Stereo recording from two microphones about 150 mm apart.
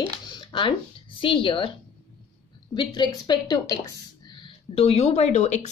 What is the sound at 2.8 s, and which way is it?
Speech, 30° left (ahead or behind).